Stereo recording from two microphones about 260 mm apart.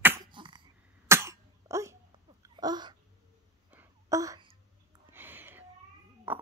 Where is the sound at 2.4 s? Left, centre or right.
Centre.